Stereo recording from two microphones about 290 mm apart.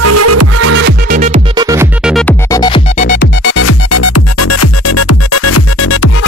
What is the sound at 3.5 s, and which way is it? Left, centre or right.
Music, left.